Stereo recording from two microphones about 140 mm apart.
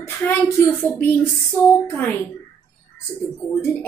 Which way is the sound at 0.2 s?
15° left (ahead or behind).